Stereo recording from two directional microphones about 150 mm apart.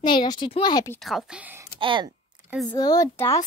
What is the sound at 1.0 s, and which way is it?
Speech, centre (ahead or behind).